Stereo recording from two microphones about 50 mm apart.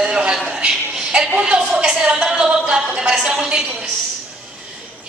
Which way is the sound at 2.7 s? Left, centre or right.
Centre.